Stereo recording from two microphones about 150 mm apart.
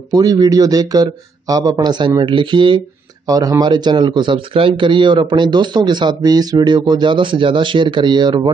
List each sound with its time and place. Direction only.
0.1 s a man's voice: 25° right (ahead or behind)